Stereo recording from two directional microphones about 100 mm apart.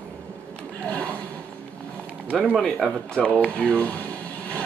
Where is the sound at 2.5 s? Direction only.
5° left (ahead or behind).